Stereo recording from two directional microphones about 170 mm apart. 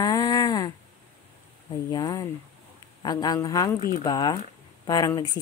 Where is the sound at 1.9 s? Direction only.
20° left (ahead or behind).